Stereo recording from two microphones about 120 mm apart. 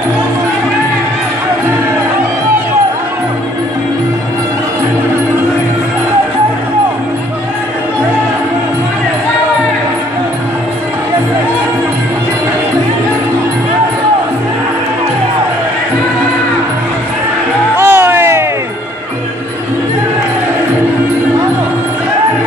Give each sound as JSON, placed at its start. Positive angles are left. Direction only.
{"t": 17.7, "sound": "music", "side_deg": -20}